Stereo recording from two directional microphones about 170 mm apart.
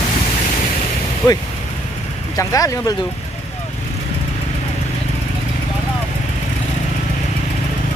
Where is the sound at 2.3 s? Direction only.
20° left (ahead or behind).